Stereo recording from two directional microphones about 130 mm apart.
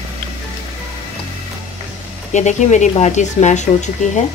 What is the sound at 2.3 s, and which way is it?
Speech, 65° left (ahead or behind).